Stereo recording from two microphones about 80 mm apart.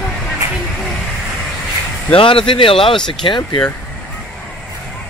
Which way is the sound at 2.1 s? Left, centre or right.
Left.